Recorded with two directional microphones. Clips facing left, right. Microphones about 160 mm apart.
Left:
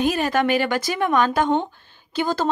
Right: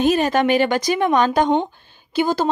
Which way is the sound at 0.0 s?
20° right (ahead or behind).